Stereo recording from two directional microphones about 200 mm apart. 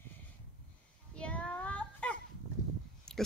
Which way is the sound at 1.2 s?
5° left (ahead or behind).